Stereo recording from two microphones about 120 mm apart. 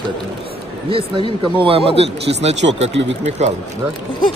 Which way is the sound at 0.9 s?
45° right (ahead or behind).